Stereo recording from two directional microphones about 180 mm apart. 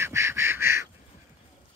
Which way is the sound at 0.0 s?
15° right (ahead or behind).